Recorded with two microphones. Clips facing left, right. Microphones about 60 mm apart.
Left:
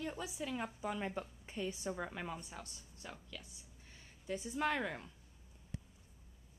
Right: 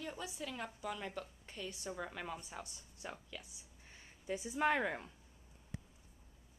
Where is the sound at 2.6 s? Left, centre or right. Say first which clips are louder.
Right 2 dB; centre.